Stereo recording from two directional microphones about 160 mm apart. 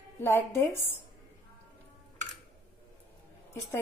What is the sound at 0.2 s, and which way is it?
Speech, 15° left (ahead or behind).